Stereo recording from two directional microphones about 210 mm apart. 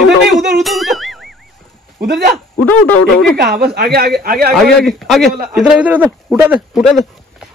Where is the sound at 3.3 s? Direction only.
50° right (ahead or behind).